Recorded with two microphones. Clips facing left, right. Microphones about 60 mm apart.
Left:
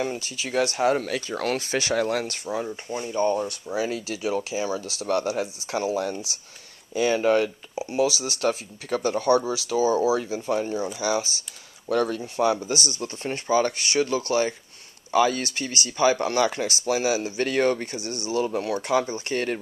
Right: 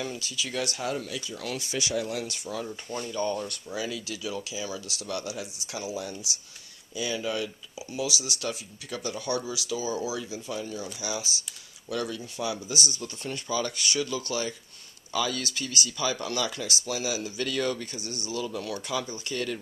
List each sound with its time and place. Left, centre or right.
0.0 s speech: left
2.5 s speech: left
7.7 s speech: left